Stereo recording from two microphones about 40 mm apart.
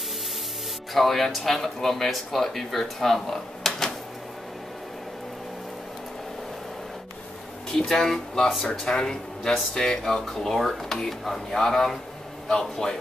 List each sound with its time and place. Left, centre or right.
0.9 s speech: centre
7.9 s speech: centre
8.6 s speech: centre